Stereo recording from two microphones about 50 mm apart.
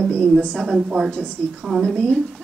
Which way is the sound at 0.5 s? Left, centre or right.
Centre.